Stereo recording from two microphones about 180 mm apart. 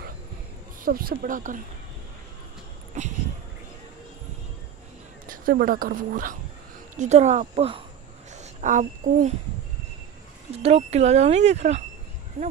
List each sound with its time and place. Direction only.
0.8 s speech: 55° right (ahead or behind)
3.0 s a sound: 40° right (ahead or behind)
5.2 s speech: 50° right (ahead or behind)
7.0 s a woman's voice: 40° right (ahead or behind)
10.6 s speech: 35° right (ahead or behind)